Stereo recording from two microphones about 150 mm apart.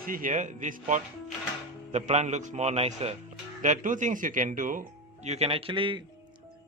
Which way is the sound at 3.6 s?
60° right (ahead or behind).